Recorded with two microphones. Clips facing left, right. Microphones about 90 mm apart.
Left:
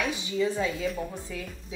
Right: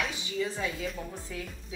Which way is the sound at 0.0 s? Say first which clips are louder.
Left 5 dB; 20° left (ahead or behind).